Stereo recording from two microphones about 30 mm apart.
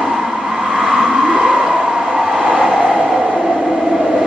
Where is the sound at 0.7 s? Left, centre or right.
Centre.